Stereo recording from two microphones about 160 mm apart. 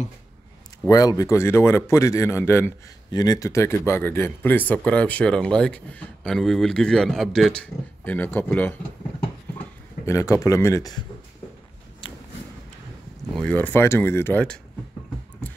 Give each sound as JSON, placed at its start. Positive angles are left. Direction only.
{"t": 0.8, "sound": "speech", "side_deg": 20}
{"t": 10.0, "sound": "speech", "side_deg": 20}
{"t": 13.3, "sound": "speech", "side_deg": 5}